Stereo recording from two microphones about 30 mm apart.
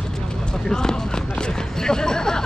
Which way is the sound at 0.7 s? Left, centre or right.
Left.